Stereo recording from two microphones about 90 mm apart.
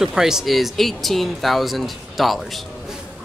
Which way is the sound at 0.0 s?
5° right (ahead or behind).